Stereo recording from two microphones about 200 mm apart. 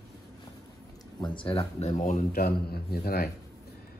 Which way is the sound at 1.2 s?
25° left (ahead or behind).